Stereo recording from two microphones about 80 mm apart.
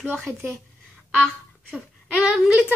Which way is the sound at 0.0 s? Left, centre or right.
Right.